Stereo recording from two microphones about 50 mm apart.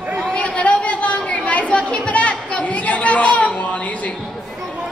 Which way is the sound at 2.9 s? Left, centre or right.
Left.